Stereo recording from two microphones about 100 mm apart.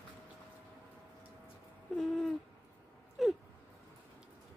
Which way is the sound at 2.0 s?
5° left (ahead or behind).